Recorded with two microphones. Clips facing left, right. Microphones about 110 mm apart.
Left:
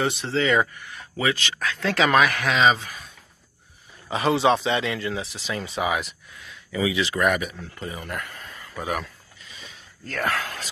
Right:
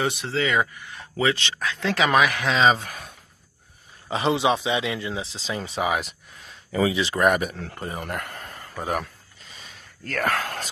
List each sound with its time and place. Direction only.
0.0 s speech: 15° right (ahead or behind)
0.8 s speech: 25° right (ahead or behind)
2.5 s speech: 30° right (ahead or behind)
2.8 s speech: 55° right (ahead or behind)
4.1 s speech: 25° right (ahead or behind)
4.4 s speech: 10° right (ahead or behind); by 5.7 s 25° right (ahead or behind)
5.8 s speech: 40° right (ahead or behind)
7.7 s a sound: 50° right (ahead or behind)